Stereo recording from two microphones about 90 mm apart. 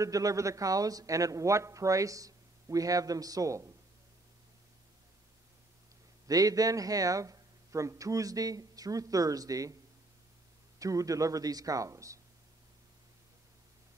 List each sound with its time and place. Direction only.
0.0 s a man's voice: 40° right (ahead or behind)
6.2 s a man's voice: 45° right (ahead or behind)
10.8 s a man's voice: 40° right (ahead or behind)